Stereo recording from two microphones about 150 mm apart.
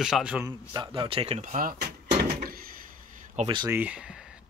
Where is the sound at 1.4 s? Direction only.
60° right (ahead or behind).